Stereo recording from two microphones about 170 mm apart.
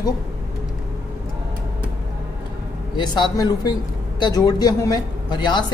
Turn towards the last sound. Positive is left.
turn(degrees=25)  # may be behind; listen again after turning